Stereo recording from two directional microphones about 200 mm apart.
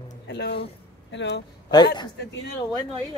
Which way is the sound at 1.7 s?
20° left (ahead or behind).